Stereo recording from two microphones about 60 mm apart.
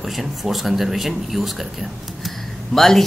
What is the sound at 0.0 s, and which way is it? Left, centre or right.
Speech, centre.